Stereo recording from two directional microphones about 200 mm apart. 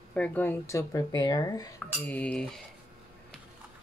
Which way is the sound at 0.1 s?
5° left (ahead or behind).